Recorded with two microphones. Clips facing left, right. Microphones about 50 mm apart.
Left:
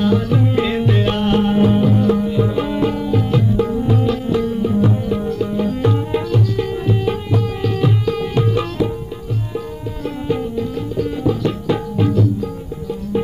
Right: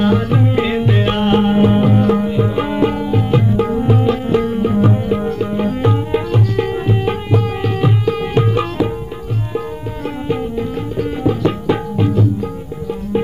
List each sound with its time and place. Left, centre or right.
0.0 s music: right
0.4 s music: centre; by 2.3 s right
2.3 s music: right
6.5 s tabla: right
7.7 s tabla: right
10.2 s music: right
11.0 s tabla: right
12.0 s tabla: right